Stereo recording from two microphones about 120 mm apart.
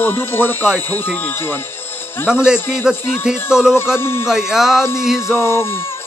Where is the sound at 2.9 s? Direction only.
20° left (ahead or behind).